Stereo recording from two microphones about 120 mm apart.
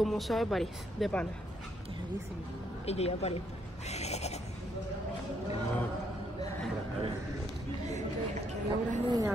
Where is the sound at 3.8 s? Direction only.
65° left (ahead or behind).